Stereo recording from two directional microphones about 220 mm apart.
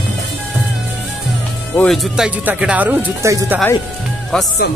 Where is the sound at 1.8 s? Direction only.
Centre (ahead or behind).